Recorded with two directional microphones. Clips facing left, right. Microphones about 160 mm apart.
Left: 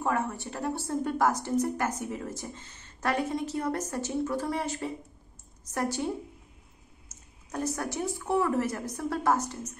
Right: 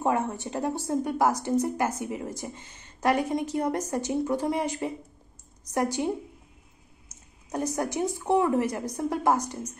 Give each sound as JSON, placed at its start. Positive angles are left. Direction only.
{"t": 0.0, "sound": "a woman's voice", "side_deg": -20}